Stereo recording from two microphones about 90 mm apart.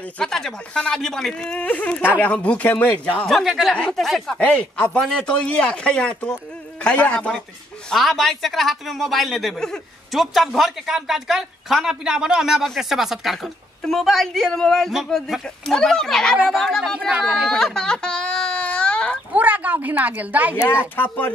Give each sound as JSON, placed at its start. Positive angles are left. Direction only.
{"t": 0.2, "sound": "speech", "side_deg": 5}
{"t": 3.3, "sound": "a man's voice", "side_deg": 0}
{"t": 4.4, "sound": "a man's voice", "side_deg": 10}
{"t": 19.3, "sound": "a woman's voice", "side_deg": -15}
{"t": 20.9, "sound": "speech", "side_deg": 20}